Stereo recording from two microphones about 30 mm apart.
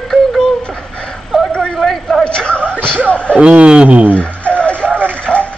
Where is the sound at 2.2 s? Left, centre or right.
Left.